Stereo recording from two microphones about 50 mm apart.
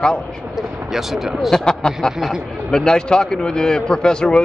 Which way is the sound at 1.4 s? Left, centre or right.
Centre.